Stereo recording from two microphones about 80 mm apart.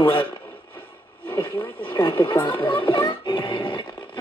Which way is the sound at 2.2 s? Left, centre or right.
Left.